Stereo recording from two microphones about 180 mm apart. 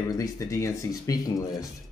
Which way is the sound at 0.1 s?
20° left (ahead or behind).